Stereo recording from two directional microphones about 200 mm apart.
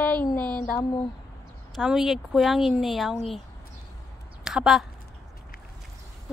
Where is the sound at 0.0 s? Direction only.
10° left (ahead or behind).